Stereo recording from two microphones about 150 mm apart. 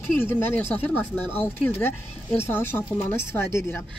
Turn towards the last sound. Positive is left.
turn(degrees=15)  # may be behind; listen again after turning